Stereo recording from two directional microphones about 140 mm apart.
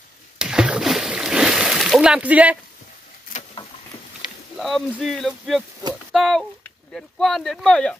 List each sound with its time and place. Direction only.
0.4 s splash: 5° right (ahead or behind)
4.6 s speech: centre (ahead or behind)
5.8 s speech: 30° right (ahead or behind)
6.1 s speech: centre (ahead or behind)